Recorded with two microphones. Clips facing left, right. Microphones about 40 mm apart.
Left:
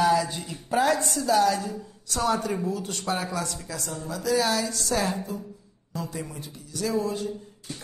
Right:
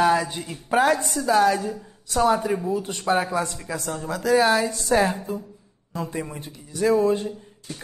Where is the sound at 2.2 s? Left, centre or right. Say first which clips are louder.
Right 5 dB; right.